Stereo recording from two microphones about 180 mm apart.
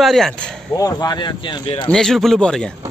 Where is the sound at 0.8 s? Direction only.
20° left (ahead or behind).